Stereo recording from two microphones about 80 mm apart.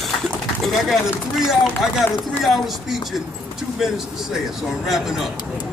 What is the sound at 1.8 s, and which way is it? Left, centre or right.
Speech, centre.